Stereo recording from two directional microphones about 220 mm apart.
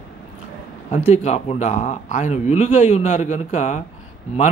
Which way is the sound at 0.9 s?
30° left (ahead or behind).